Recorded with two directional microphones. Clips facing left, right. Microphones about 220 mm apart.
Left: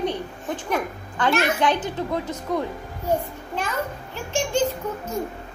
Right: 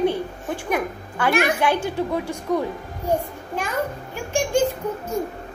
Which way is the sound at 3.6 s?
10° right (ahead or behind).